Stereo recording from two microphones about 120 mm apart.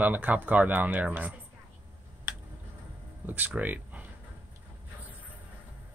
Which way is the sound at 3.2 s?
15° right (ahead or behind).